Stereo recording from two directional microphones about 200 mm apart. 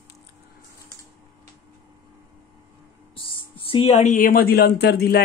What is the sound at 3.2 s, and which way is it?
Speech, 25° left (ahead or behind).